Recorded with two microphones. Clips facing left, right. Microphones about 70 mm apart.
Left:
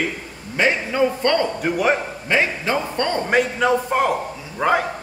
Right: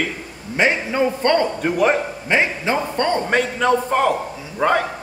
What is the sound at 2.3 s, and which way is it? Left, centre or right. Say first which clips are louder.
Speech: right 1 dB; right.